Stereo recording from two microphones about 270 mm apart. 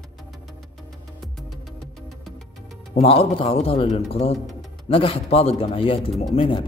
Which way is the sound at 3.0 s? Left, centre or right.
Left.